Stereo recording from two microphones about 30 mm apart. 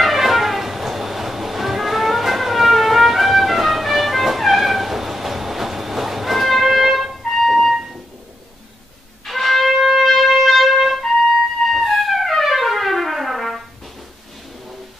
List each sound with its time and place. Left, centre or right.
0.0 s cat: centre
7.2 s music: centre
9.2 s music: centre